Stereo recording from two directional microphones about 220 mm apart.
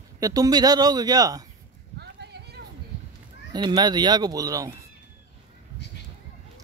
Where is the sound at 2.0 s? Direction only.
50° right (ahead or behind).